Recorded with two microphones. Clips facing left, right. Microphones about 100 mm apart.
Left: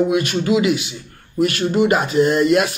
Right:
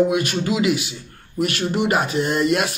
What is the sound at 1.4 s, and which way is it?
A man's voice, 40° left (ahead or behind).